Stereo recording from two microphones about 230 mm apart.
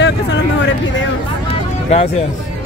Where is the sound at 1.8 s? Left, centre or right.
Left.